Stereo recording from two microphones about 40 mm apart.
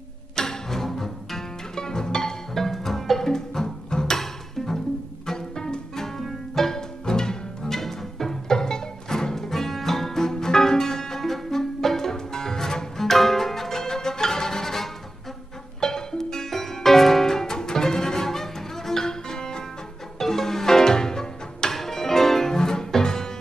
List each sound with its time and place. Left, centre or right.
0.4 s music: centre